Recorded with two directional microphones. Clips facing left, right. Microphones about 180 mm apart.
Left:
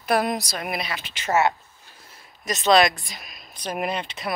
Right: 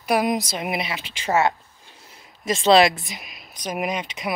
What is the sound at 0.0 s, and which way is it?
A woman's voice, 10° right (ahead or behind).